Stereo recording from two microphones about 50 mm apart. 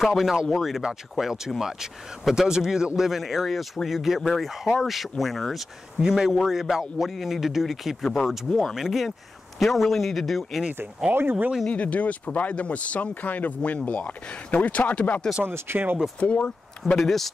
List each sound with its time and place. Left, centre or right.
0.0 s speech: centre
3.0 s speech: centre
6.0 s speech: centre
11.1 s speech: right
11.7 s speech: left
15.4 s speech: right
16.2 s speech: left
16.8 s speech: centre